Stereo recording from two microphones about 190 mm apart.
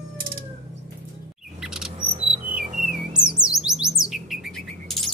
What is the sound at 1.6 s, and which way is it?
Chirp, centre (ahead or behind).